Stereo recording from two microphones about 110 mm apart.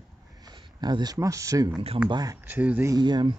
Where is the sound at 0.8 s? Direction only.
40° right (ahead or behind).